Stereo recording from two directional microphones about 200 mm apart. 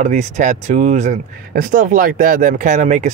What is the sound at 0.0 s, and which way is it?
Speech, 35° right (ahead or behind).